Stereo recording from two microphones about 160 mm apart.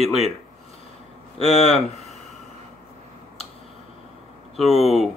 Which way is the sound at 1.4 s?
45° left (ahead or behind).